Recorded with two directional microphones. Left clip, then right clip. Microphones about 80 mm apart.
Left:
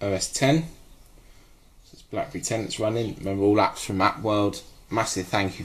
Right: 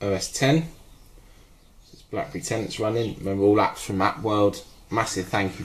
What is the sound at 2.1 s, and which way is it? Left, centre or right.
Speech, left.